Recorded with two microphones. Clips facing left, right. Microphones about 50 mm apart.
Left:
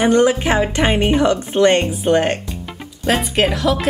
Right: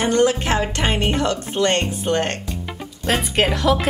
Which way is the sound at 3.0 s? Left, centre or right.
Centre.